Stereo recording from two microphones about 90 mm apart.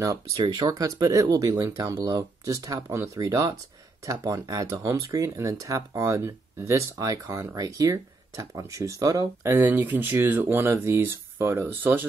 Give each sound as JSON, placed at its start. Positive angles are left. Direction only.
{"t": 0.0, "sound": "speech", "side_deg": -45}
{"t": 9.4, "sound": "speech", "side_deg": -25}